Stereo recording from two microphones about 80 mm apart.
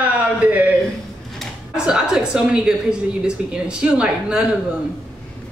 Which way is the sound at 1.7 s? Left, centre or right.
Centre.